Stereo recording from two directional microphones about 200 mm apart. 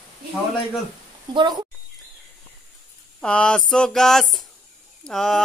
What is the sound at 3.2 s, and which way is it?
Child singing, 5° left (ahead or behind).